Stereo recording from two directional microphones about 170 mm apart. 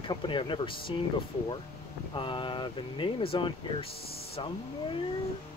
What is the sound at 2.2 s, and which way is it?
Speech, 30° left (ahead or behind).